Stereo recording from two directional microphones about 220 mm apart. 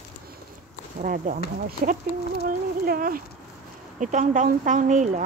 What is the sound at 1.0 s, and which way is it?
Speech, 40° right (ahead or behind).